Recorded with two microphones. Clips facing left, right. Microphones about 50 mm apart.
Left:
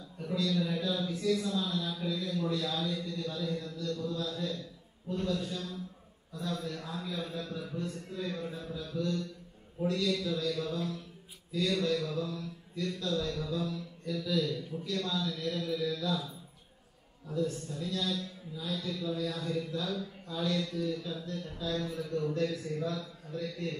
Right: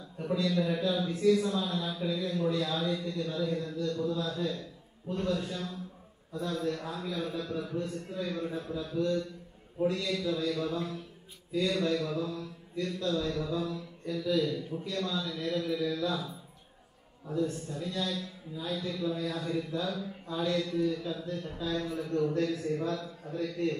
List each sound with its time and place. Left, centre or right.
0.2 s a man's voice: centre
6.3 s a man's voice: right; by 16.0 s centre
17.3 s a man's voice: centre
22.3 s a man's voice: right